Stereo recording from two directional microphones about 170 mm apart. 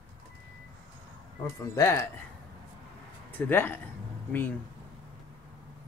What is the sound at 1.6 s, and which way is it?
Speech, 20° left (ahead or behind).